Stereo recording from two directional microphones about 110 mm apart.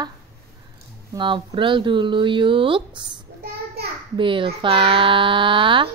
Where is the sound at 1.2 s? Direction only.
45° right (ahead or behind).